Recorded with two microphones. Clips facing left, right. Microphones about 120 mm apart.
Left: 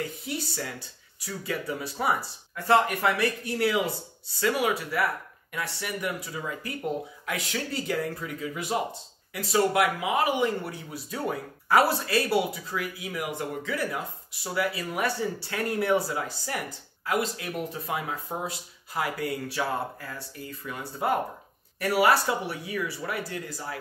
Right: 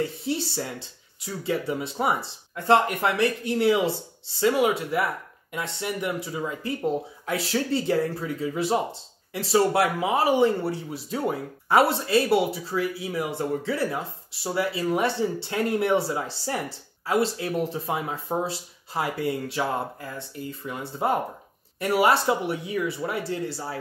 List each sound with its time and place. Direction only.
0.0 s speech: 30° right (ahead or behind)